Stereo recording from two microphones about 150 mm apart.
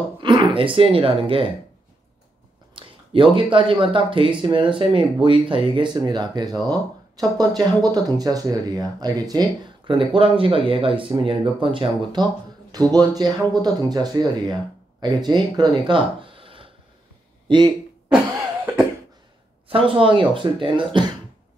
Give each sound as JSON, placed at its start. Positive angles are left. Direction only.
{"t": 0.2, "sound": "speech", "side_deg": -30}
{"t": 2.7, "sound": "speech", "side_deg": -35}
{"t": 19.7, "sound": "speech", "side_deg": -35}